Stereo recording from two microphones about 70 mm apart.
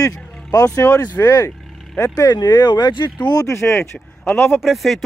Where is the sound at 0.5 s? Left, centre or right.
Left.